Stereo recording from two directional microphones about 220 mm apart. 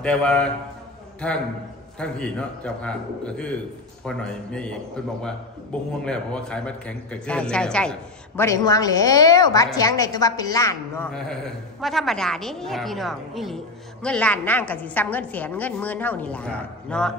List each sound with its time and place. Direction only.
0.0 s a man's voice: 5° left (ahead or behind)
2.0 s a man's voice: 5° left (ahead or behind)
11.8 s a man's voice: centre (ahead or behind)